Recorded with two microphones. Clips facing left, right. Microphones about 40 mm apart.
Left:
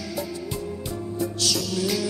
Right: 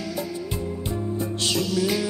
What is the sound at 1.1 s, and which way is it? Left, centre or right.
Music, right.